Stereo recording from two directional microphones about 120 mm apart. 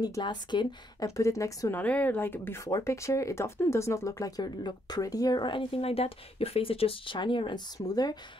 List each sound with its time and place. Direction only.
0.0 s speech: 35° left (ahead or behind)
1.0 s a woman's voice: 25° left (ahead or behind)
1.8 s speech: 15° left (ahead or behind); by 8.2 s 35° left (ahead or behind)